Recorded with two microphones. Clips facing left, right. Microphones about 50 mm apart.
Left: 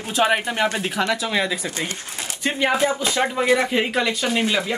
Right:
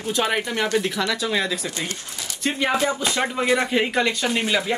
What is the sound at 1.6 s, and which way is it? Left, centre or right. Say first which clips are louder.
Speech: left 2 dB; left.